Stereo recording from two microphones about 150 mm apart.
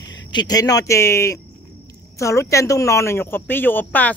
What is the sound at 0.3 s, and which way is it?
Speech, 30° left (ahead or behind).